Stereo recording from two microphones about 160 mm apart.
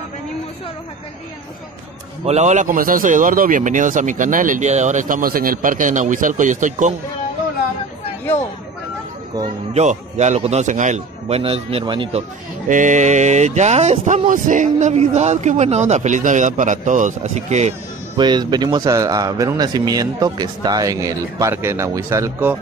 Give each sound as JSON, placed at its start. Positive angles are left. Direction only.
{"t": 2.2, "sound": "a man's voice", "side_deg": -45}
{"t": 9.8, "sound": "a man's voice", "side_deg": -45}
{"t": 12.6, "sound": "speech", "side_deg": -55}
{"t": 18.1, "sound": "speech", "side_deg": -25}